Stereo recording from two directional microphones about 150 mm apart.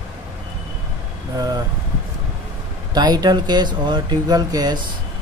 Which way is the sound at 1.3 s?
25° right (ahead or behind).